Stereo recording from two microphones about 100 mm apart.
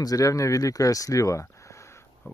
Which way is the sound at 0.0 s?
35° left (ahead or behind).